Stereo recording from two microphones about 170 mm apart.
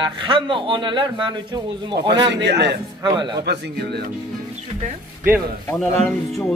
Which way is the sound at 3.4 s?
75° right (ahead or behind).